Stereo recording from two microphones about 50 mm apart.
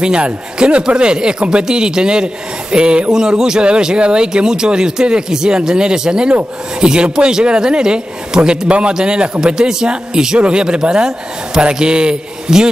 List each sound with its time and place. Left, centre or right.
0.0 s speech: centre